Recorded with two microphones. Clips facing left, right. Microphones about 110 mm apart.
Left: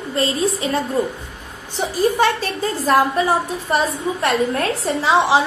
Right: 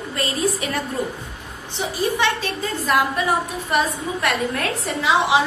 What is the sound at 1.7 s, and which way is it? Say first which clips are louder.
A woman's voice: left 4 dB; 40° left (ahead or behind).